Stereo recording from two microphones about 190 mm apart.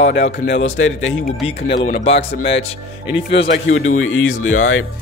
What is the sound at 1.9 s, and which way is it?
Speech, 30° left (ahead or behind).